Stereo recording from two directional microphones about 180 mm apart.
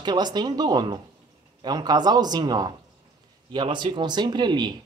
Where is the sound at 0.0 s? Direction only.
25° right (ahead or behind).